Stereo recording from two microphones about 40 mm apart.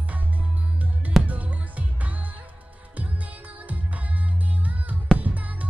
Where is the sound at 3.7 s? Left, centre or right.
Right.